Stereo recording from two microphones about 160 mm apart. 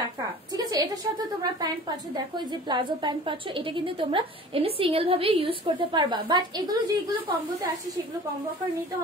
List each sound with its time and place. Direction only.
0.6 s a woman's voice: 25° right (ahead or behind)